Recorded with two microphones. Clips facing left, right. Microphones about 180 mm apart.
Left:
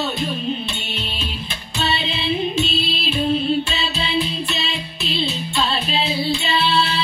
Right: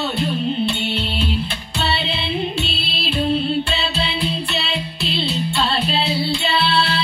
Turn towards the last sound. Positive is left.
turn(degrees=15)  # may be behind; listen again after turning